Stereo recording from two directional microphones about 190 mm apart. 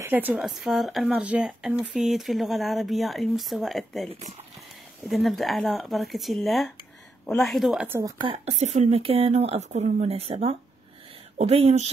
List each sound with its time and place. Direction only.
0.0 s speech: 10° right (ahead or behind)
8.2 s speech: 30° right (ahead or behind)